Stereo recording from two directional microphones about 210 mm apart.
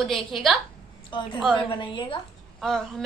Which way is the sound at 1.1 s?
20° left (ahead or behind).